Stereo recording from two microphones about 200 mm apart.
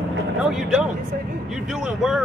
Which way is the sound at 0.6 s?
5° right (ahead or behind).